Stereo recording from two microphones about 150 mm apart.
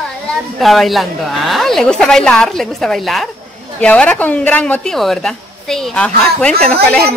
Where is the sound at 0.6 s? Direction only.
Centre (ahead or behind).